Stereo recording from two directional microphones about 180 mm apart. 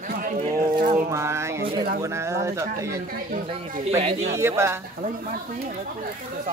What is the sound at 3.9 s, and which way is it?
Speech, 40° right (ahead or behind).